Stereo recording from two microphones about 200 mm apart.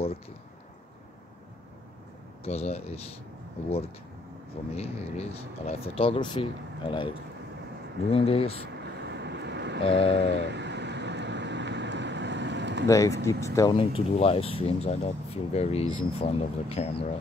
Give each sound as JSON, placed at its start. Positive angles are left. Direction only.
{"t": 2.4, "sound": "speech", "side_deg": 30}
{"t": 4.7, "sound": "speech", "side_deg": 30}
{"t": 8.7, "sound": "vehicle", "side_deg": -60}
{"t": 9.8, "sound": "speech", "side_deg": 30}
{"t": 10.4, "sound": "vehicle", "side_deg": -60}
{"t": 12.8, "sound": "speech", "side_deg": 15}
{"t": 13.7, "sound": "speech", "side_deg": 30}